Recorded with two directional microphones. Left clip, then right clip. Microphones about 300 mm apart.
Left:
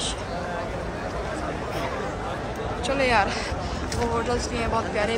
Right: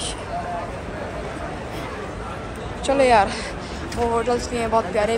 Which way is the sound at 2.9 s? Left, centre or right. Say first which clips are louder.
Right 6 dB; centre.